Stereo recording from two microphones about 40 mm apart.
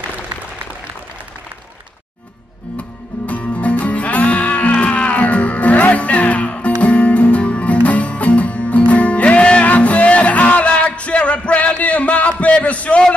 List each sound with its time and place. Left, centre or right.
2.8 s music: left